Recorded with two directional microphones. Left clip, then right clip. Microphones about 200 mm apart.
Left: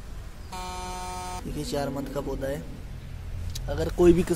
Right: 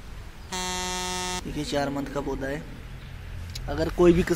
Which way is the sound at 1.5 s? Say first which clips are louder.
Right 1 dB; 10° right (ahead or behind).